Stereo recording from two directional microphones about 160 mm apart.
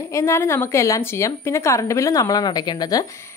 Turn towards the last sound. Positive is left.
turn(degrees=25)  # may be behind; listen again after turning